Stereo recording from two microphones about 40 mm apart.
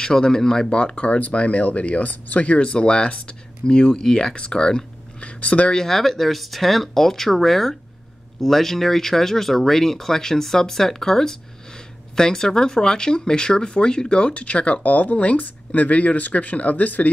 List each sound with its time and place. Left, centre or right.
0.0 s speech: centre
0.7 s speech: left
5.2 s speech: left
5.9 s speech: centre; by 17.1 s left